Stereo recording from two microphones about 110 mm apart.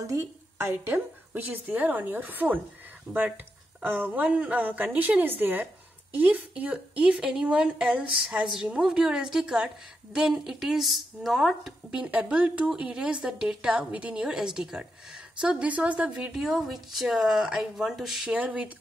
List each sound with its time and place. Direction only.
0.0 s a woman's voice: 25° right (ahead or behind); by 18.7 s 10° right (ahead or behind)